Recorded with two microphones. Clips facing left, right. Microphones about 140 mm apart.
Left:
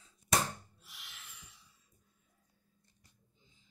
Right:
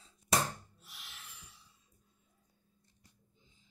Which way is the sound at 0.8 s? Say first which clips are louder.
Right 3 dB; 35° right (ahead or behind).